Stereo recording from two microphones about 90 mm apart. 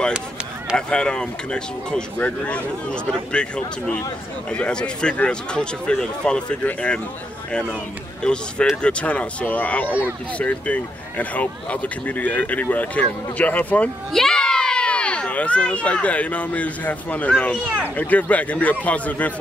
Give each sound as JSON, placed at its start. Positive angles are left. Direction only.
{"t": 0.7, "sound": "speech", "side_deg": 10}
{"t": 8.2, "sound": "speech", "side_deg": 10}
{"t": 9.8, "sound": "speech", "side_deg": -20}
{"t": 10.4, "sound": "speech", "side_deg": 15}
{"t": 14.1, "sound": "a child's voice", "side_deg": 5}